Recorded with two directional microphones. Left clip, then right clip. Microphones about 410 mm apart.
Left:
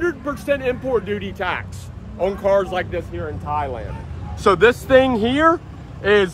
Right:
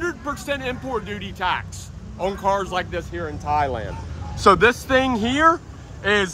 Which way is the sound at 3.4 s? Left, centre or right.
Right.